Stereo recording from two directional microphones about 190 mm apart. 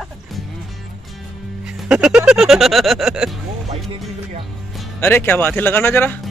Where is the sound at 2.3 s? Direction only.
Centre (ahead or behind).